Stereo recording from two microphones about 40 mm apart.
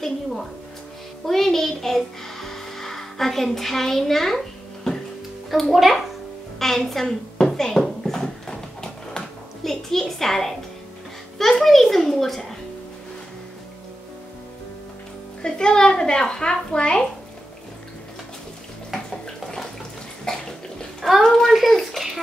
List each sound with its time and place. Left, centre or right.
0.0 s music: centre
1.2 s a child's voice: centre
6.6 s speech: centre
8.0 s a sound: centre
9.6 s a child's voice: centre
15.4 s speech: left
20.3 s bathtub: centre
21.3 s a child's voice: centre
21.5 s a sound: centre